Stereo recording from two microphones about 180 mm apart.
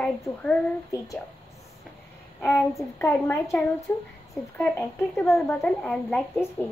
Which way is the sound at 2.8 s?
10° left (ahead or behind).